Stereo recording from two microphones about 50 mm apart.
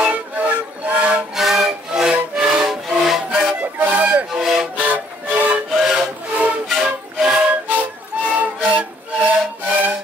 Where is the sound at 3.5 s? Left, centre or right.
Right.